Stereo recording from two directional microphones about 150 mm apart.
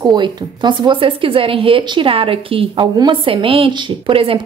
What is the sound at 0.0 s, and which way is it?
Speech, 30° right (ahead or behind).